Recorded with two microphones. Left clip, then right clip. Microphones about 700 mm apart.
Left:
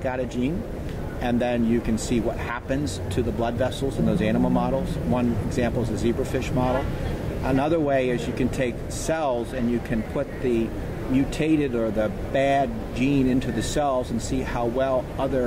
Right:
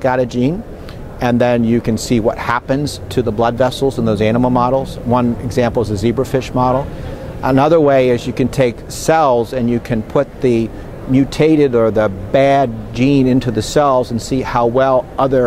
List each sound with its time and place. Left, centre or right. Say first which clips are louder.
0.0 s speech: right 12 dB; right